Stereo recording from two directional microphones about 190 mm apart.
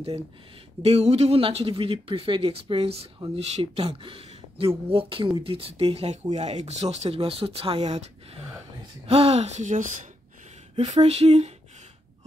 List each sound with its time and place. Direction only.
0.8 s speech: 30° right (ahead or behind)